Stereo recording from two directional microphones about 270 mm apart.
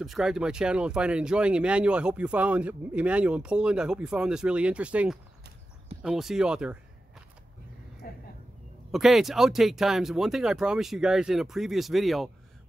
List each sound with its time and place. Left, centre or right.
0.0 s speech: centre
8.0 s a sound: left
8.9 s speech: centre